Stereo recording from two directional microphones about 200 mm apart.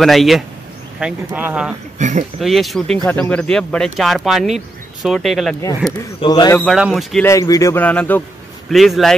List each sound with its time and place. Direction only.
0.0 s speech: centre (ahead or behind)
2.0 s speech: 35° right (ahead or behind)
2.4 s speech: centre (ahead or behind)
6.2 s a man's voice: 20° left (ahead or behind)
6.6 s speech: centre (ahead or behind)
7.2 s a man's voice: 15° left (ahead or behind); by 9.1 s centre (ahead or behind)